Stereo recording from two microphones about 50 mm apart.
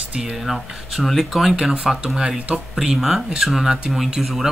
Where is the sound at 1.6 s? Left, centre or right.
Centre.